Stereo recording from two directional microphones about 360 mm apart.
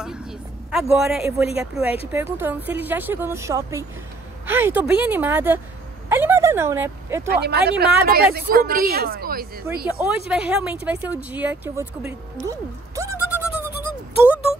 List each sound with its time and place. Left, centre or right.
0.0 s speech: centre
7.2 s speech: right
9.9 s speech: centre
12.4 s a sound: centre